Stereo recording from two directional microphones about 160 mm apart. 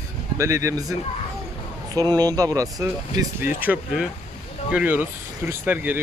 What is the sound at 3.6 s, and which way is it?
Speech, 10° right (ahead or behind).